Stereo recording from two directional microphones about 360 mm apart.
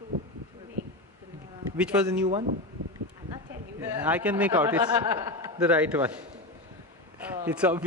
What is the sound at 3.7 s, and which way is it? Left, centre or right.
Speech, centre.